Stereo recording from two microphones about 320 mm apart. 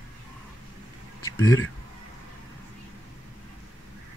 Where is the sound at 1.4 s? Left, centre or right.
Left.